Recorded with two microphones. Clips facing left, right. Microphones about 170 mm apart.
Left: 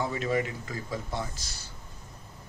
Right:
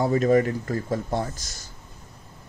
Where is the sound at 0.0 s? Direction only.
45° right (ahead or behind).